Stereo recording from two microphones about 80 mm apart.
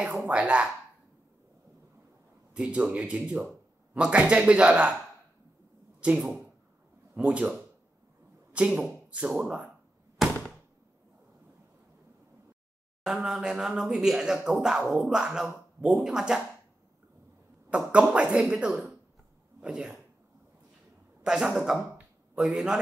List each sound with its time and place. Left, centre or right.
0.3 s speech: centre
2.5 s speech: centre
5.9 s speech: centre
8.6 s speech: centre
10.2 s a sound: centre
13.0 s speech: centre
17.6 s speech: centre
21.2 s speech: centre